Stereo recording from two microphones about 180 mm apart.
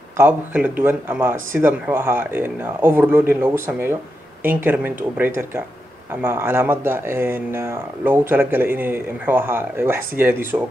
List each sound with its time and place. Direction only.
0.2 s speech: 10° right (ahead or behind)